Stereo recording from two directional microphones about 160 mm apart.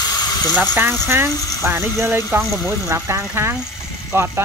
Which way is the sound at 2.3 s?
15° right (ahead or behind).